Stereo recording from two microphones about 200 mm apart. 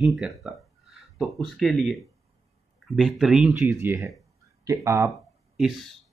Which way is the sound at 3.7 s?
15° right (ahead or behind).